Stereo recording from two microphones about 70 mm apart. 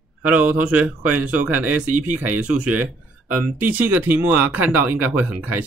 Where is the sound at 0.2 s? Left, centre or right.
Right.